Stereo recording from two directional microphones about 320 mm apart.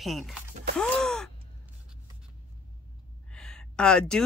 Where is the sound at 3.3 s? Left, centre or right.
Centre.